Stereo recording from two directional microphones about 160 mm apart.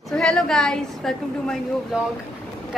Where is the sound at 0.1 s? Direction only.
5° left (ahead or behind).